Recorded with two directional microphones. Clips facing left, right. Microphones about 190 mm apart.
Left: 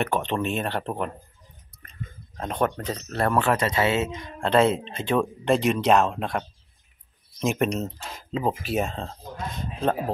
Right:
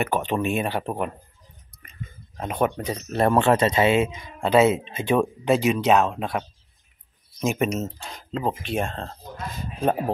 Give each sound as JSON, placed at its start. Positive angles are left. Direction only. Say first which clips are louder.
{"t": 0.0, "sound": "speech", "louder": "right 1 dB", "side_deg": -5}
{"t": 2.3, "sound": "speech", "louder": "right 1 dB", "side_deg": -5}